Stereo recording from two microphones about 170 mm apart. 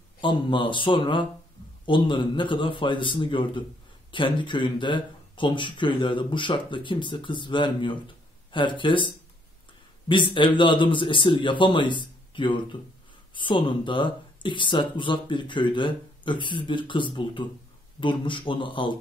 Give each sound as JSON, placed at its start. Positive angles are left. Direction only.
{"t": 0.2, "sound": "speech", "side_deg": 30}